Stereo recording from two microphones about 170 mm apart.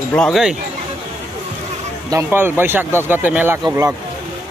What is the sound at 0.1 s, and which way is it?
Speech, centre (ahead or behind).